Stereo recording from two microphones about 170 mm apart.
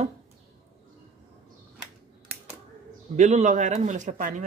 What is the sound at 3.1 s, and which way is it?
A man's voice, 45° right (ahead or behind).